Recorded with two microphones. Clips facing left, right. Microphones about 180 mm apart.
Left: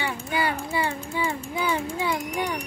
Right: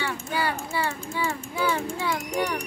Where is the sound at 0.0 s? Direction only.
15° left (ahead or behind).